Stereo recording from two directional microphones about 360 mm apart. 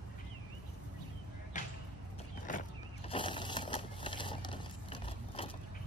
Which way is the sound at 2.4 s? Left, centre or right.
Centre.